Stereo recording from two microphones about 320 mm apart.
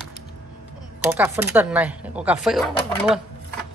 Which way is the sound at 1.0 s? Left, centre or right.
Centre.